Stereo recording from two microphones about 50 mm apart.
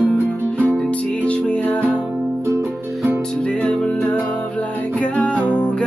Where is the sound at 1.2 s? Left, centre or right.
Left.